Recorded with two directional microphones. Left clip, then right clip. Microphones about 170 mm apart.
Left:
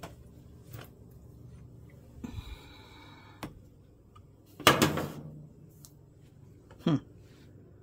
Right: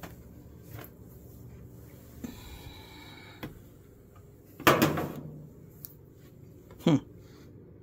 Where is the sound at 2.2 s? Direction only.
25° left (ahead or behind).